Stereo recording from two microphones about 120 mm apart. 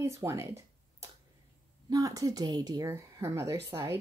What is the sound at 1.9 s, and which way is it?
A woman's voice, 30° right (ahead or behind).